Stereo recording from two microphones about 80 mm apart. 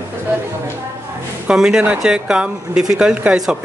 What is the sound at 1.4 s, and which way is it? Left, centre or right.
Speech, centre.